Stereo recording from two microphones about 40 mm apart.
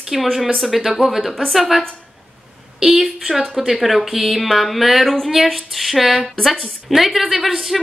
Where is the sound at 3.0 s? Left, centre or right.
Centre.